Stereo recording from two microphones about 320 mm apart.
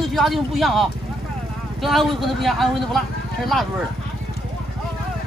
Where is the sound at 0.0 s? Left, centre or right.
Centre.